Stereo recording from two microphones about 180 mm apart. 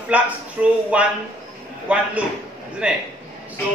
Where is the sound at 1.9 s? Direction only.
5° right (ahead or behind).